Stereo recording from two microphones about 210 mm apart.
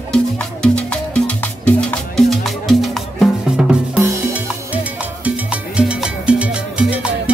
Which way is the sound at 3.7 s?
10° right (ahead or behind).